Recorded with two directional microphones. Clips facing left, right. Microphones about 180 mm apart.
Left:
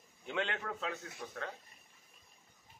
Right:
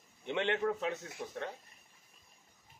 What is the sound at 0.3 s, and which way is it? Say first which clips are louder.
A man's voice: right 6 dB; 20° right (ahead or behind).